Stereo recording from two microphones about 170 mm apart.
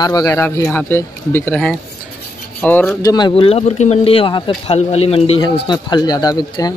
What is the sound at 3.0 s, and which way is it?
Speech, 25° left (ahead or behind).